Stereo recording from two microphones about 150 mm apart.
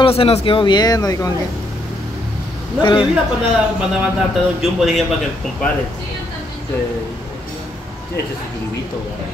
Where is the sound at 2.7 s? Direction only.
30° left (ahead or behind).